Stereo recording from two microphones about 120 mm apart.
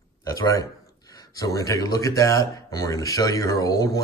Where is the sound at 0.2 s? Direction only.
25° left (ahead or behind).